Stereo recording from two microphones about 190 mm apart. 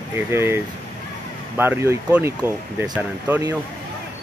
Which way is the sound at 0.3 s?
15° right (ahead or behind).